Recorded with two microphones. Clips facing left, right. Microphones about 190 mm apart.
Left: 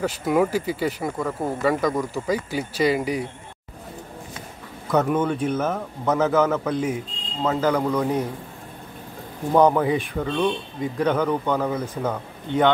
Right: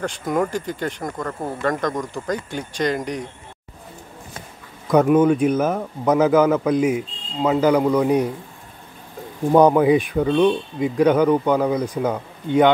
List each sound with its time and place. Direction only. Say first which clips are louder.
0.0 s speech: left 1 dB; 5° left (ahead or behind)
4.9 s speech: right 6 dB; 10° right (ahead or behind)
9.5 s speech: right 4 dB; 15° right (ahead or behind)